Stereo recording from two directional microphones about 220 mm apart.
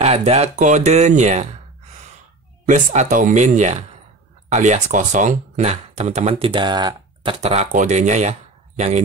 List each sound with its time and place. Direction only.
0.0 s speech: 30° right (ahead or behind)